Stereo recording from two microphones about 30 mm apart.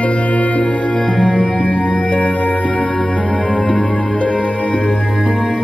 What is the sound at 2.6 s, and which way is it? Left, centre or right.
Music, left.